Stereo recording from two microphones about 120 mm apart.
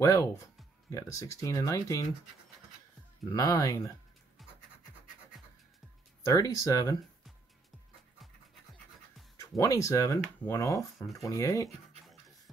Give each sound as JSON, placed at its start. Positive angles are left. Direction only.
{"t": 0.0, "sound": "speech", "side_deg": 25}
{"t": 3.3, "sound": "speech", "side_deg": 30}
{"t": 4.4, "sound": "scratch", "side_deg": 0}
{"t": 6.2, "sound": "speech", "side_deg": 30}
{"t": 9.4, "sound": "speech", "side_deg": 30}
{"t": 11.0, "sound": "speech", "side_deg": 0}
{"t": 11.2, "sound": "speech", "side_deg": 25}